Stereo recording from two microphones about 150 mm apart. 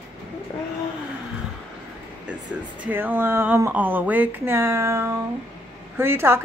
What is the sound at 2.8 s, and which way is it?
Speech, 15° right (ahead or behind).